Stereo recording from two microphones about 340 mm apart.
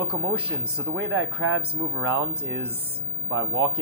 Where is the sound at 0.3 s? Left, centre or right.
Centre.